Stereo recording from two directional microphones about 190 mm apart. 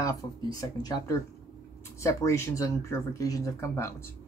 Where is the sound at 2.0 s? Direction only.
15° left (ahead or behind).